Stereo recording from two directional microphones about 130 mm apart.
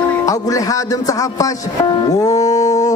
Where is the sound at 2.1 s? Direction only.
30° left (ahead or behind).